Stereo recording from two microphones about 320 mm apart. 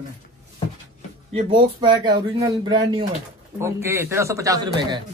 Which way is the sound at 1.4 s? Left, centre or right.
Centre.